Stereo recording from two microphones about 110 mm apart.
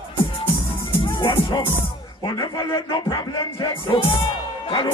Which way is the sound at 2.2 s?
40° left (ahead or behind).